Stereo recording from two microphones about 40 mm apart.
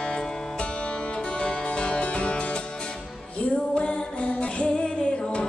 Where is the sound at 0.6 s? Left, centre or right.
Left.